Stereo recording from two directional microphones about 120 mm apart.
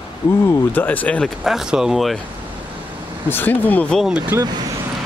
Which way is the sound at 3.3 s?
15° left (ahead or behind).